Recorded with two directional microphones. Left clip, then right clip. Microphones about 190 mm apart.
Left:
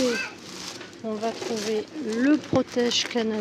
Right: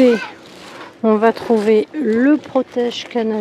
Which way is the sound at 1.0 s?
40° right (ahead or behind).